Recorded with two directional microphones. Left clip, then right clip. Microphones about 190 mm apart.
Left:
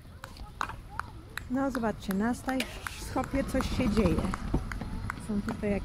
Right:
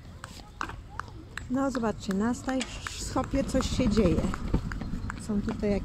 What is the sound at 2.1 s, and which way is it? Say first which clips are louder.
Speech: right 1 dB; 40° left (ahead or behind).